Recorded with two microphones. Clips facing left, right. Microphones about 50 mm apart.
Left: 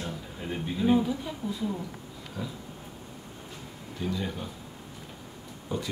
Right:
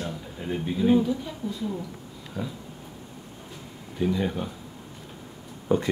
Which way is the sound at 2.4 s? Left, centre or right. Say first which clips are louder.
Right 4 dB; right.